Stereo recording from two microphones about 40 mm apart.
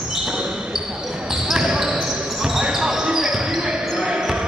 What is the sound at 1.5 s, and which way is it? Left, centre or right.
Basketball bounce, centre.